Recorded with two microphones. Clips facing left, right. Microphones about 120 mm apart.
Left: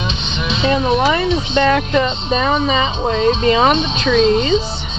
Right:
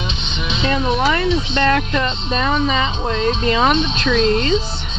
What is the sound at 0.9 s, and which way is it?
Speech, 10° left (ahead or behind).